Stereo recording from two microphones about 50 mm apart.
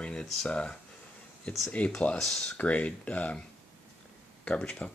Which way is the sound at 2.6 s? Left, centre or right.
Left.